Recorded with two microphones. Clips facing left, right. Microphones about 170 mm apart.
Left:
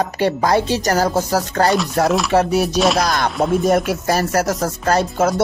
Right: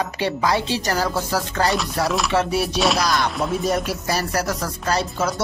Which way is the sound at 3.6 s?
50° left (ahead or behind).